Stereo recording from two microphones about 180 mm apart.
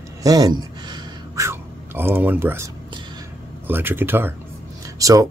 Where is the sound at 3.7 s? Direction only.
10° right (ahead or behind).